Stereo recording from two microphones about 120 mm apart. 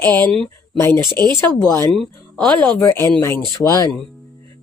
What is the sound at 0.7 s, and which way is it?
Speech, 20° left (ahead or behind).